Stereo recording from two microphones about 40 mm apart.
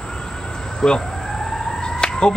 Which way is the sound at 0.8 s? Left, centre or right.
Centre.